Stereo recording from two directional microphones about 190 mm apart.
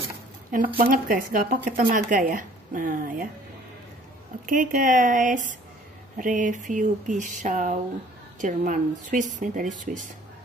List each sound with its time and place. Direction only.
0.5 s speech: 50° right (ahead or behind)
4.5 s speech: 45° right (ahead or behind)